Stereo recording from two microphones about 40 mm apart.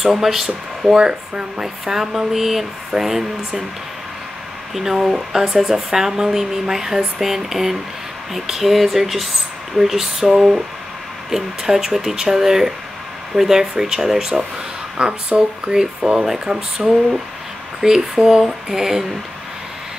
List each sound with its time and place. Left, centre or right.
0.0 s speech: centre
4.7 s speech: centre
15.0 s speech: right
15.7 s speech: centre